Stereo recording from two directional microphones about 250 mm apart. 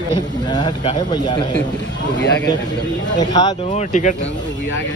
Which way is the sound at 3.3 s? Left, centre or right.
Left.